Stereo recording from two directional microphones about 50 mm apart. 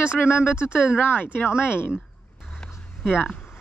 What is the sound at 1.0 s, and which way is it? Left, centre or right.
Speech, left.